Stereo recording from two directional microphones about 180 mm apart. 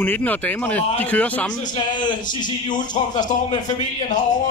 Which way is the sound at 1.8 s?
25° left (ahead or behind).